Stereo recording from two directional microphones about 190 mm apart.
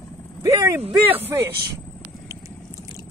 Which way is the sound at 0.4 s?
15° right (ahead or behind).